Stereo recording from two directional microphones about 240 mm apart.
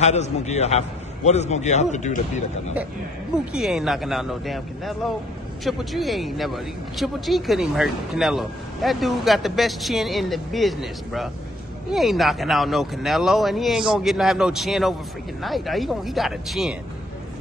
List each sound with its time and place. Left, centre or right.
0.0 s a man's voice: left
3.5 s speech: centre